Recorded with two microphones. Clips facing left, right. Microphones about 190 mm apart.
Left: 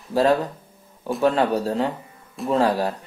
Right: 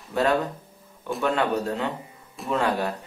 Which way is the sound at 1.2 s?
35° left (ahead or behind).